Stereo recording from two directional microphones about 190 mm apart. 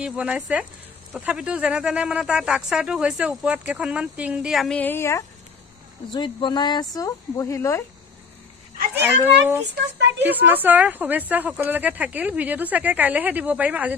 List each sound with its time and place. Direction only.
0.0 s speech: 5° right (ahead or behind); by 5.2 s 15° left (ahead or behind)
6.1 s speech: 25° left (ahead or behind)
8.9 s speech: 10° right (ahead or behind)